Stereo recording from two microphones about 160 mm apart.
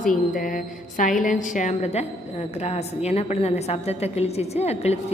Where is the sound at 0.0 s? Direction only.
60° left (ahead or behind).